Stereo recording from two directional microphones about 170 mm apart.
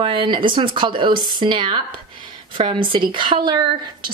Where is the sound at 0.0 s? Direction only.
30° right (ahead or behind).